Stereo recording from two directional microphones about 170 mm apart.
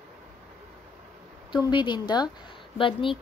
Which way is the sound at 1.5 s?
25° left (ahead or behind).